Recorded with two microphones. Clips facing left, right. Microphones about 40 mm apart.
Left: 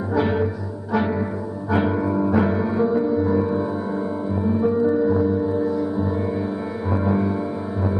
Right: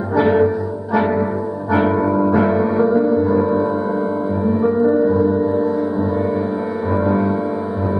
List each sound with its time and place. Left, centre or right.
0.2 s music: centre
2.0 s music: right
7.1 s music: centre